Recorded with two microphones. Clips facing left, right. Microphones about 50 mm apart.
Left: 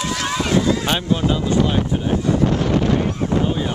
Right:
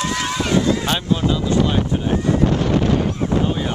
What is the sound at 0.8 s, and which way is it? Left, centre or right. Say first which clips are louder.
Speech: even; centre.